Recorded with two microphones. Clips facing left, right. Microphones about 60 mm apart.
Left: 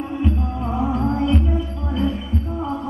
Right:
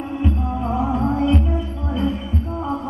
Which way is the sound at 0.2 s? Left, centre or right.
Centre.